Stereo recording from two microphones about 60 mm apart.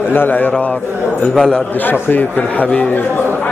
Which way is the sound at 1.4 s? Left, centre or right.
Centre.